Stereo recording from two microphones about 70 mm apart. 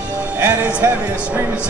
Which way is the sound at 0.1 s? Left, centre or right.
Right.